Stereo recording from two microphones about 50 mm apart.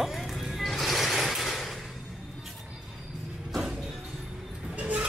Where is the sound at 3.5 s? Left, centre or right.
Centre.